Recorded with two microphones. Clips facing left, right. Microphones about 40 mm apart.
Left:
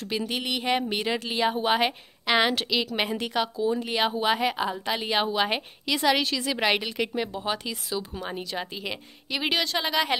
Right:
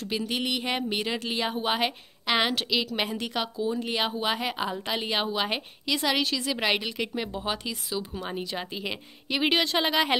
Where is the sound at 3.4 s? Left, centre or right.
Centre.